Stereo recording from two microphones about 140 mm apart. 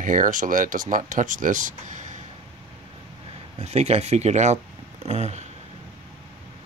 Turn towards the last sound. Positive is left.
turn(degrees=-50)  # may be behind; listen again after turning